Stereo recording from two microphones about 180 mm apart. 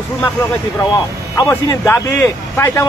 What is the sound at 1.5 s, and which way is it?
Speech, 15° left (ahead or behind).